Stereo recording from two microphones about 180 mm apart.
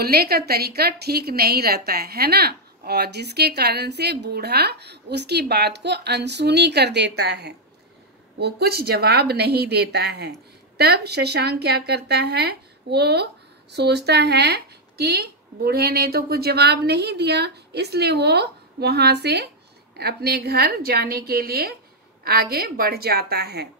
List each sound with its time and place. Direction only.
0.0 s speech: 60° right (ahead or behind)